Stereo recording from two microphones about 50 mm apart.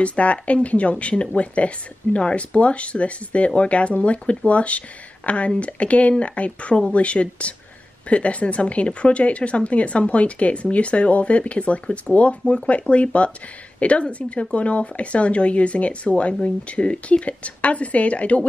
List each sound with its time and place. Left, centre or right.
0.0 s speech: left